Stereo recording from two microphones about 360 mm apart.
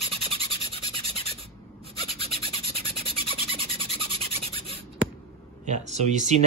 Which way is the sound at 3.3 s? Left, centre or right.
Centre.